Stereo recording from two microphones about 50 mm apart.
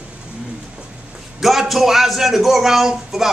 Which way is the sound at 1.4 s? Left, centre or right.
Centre.